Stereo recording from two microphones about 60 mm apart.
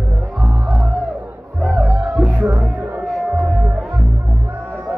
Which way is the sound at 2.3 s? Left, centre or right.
Right.